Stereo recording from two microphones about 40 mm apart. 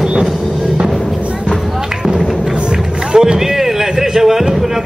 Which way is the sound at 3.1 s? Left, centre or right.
Centre.